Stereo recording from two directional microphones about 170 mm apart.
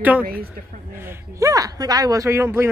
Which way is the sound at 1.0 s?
15° right (ahead or behind).